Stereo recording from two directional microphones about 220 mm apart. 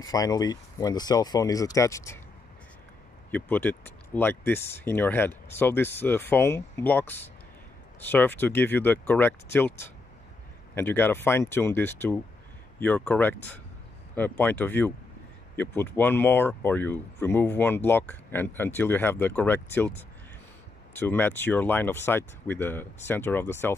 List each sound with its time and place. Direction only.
0.0 s speech: 15° left (ahead or behind)
3.3 s speech: 10° left (ahead or behind)
20.9 s speech: 10° left (ahead or behind)